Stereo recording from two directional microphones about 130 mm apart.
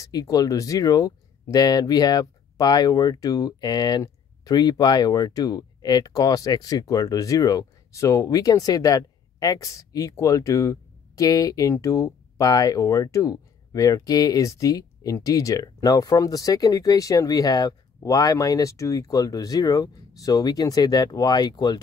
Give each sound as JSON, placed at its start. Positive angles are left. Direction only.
{"t": 0.0, "sound": "speech", "side_deg": 30}